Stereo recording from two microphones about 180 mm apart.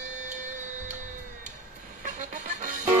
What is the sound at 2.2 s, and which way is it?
Music, 45° right (ahead or behind).